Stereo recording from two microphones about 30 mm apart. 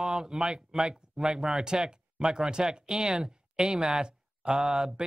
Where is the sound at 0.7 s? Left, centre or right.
Centre.